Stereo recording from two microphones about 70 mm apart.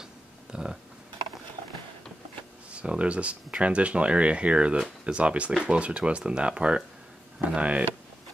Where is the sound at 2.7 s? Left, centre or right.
Centre.